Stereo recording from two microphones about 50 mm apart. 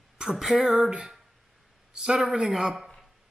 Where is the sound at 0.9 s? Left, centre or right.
Centre.